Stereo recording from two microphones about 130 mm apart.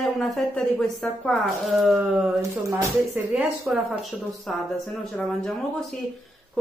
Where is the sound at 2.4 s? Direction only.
25° right (ahead or behind).